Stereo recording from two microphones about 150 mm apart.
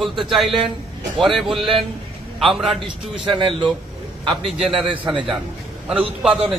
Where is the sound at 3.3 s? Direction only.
35° right (ahead or behind).